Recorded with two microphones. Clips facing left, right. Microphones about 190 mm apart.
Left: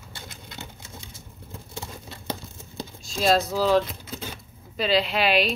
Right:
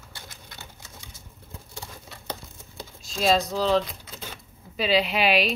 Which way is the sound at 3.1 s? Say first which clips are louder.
Left 1 dB; centre (ahead or behind).